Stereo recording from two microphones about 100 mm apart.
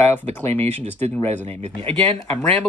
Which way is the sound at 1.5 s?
90° right.